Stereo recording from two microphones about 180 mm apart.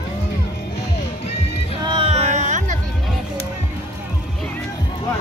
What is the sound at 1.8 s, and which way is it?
Music, 30° right (ahead or behind).